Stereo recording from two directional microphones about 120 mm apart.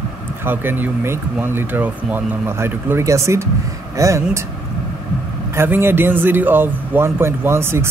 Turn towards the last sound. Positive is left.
turn(degrees=-20)  # may be behind; listen again after turning